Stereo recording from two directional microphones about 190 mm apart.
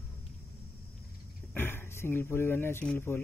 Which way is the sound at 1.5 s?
10° left (ahead or behind).